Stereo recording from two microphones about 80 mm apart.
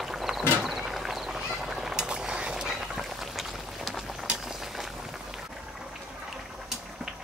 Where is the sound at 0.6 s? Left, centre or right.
Centre.